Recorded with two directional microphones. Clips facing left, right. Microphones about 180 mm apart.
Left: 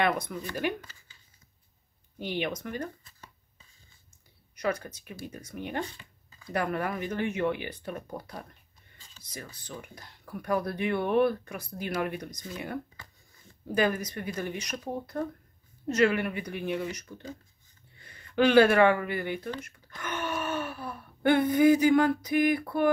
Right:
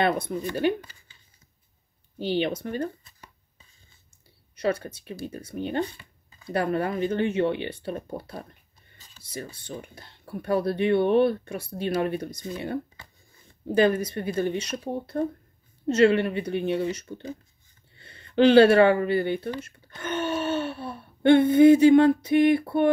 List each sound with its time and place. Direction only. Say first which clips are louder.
0.0 s speech: right 4 dB; 30° right (ahead or behind)
2.1 s speech: right 6 dB; 30° right (ahead or behind)
4.6 s speech: right 4 dB; 30° right (ahead or behind)